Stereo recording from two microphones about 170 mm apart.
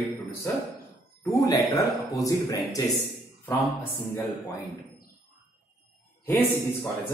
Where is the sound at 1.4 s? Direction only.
20° left (ahead or behind).